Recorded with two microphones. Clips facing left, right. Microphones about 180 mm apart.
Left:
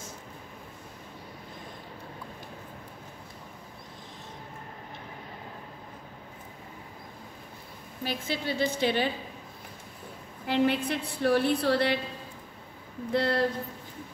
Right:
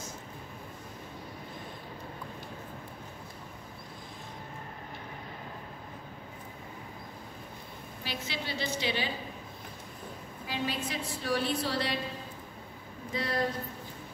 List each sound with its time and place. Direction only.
8.0 s a woman's voice: 50° left (ahead or behind)
10.4 s a woman's voice: 60° left (ahead or behind)
13.1 s a woman's voice: 65° left (ahead or behind)